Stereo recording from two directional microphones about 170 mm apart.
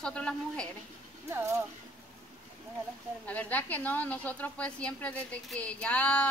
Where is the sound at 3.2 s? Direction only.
10° left (ahead or behind).